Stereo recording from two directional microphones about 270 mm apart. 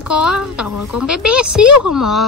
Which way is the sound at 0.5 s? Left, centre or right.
Left.